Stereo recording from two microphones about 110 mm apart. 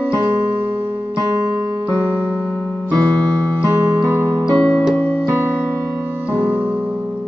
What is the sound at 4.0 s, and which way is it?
Music, 25° right (ahead or behind).